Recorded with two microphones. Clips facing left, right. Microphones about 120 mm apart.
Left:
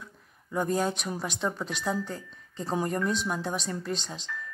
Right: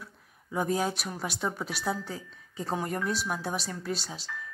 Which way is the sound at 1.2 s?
5° right (ahead or behind).